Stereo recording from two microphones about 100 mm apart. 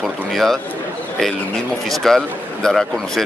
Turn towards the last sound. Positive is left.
turn(degrees=5)  # may be behind; listen again after turning